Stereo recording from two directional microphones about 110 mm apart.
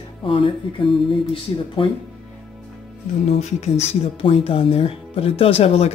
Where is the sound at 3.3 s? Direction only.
85° left.